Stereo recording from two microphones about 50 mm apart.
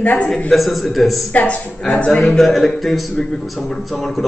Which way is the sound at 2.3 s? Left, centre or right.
Centre.